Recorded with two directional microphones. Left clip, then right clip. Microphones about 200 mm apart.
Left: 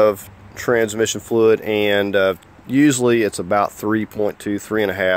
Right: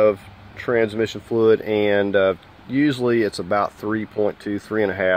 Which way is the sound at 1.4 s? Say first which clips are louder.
Left 1 dB; 40° left (ahead or behind).